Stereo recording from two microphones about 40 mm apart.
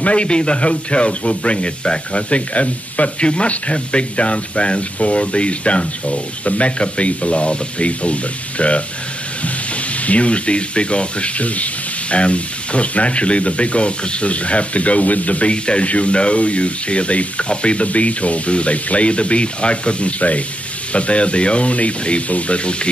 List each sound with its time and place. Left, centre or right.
0.0 s speech: left
9.9 s speech: left